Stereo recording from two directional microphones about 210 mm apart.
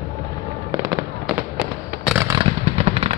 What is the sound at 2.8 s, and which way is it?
Fireworks, 30° right (ahead or behind).